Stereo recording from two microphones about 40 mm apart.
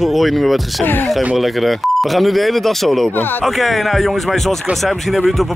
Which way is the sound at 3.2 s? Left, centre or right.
Left.